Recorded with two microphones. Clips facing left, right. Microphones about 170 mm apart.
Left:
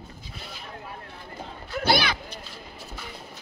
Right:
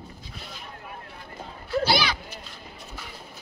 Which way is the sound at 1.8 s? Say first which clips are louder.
Left 1 dB; 55° left (ahead or behind).